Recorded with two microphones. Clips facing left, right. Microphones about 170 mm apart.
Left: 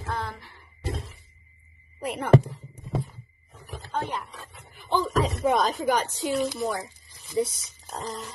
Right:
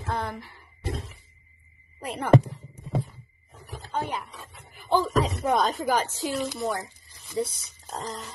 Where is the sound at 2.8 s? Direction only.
35° right (ahead or behind).